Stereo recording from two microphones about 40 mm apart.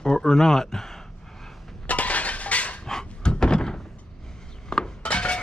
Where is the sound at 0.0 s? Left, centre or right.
Centre.